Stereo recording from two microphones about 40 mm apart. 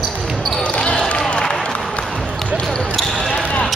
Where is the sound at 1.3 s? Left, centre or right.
Left.